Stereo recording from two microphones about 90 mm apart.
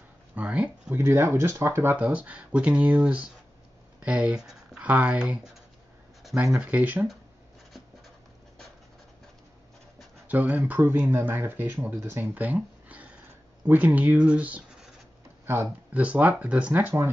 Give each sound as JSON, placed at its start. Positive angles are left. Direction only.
{"t": 0.4, "sound": "speech", "side_deg": -15}
{"t": 0.9, "sound": "speech", "side_deg": -25}
{"t": 10.2, "sound": "speech", "side_deg": -20}
{"t": 15.4, "sound": "speech", "side_deg": -25}
{"t": 15.9, "sound": "speech", "side_deg": -15}